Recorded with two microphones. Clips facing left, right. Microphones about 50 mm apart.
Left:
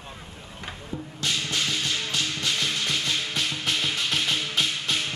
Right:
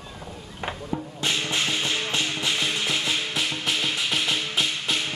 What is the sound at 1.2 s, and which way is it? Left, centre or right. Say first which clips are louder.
Music: right 1 dB; right.